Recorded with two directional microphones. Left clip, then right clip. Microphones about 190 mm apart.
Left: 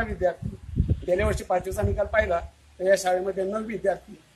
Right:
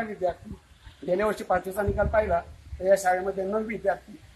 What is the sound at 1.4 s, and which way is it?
Speech, 20° left (ahead or behind).